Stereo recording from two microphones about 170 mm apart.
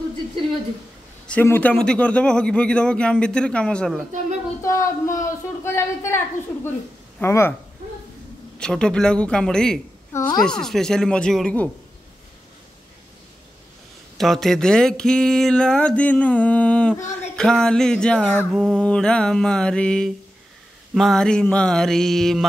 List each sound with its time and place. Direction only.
1.2 s speech: 10° left (ahead or behind)
4.6 s speech: 20° left (ahead or behind)
8.5 s speech: 5° left (ahead or behind)
10.1 s speech: 25° left (ahead or behind)
10.4 s speech: 5° left (ahead or behind)
14.1 s speech: centre (ahead or behind)